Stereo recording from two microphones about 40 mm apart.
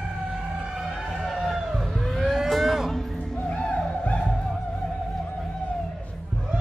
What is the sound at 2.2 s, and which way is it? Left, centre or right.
Vehicle, centre.